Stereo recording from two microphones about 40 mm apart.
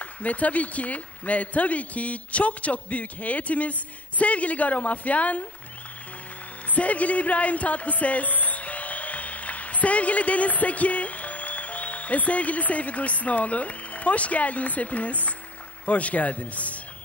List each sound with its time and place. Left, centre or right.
0.0 s speech: left
6.7 s speech: left